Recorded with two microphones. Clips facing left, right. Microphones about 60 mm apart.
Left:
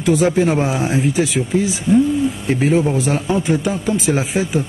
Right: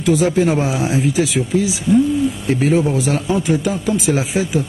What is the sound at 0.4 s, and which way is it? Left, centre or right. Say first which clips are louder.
Speech: even; centre.